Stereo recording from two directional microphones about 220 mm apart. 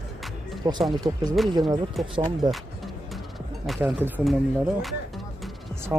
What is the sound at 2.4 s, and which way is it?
Speech, 20° right (ahead or behind).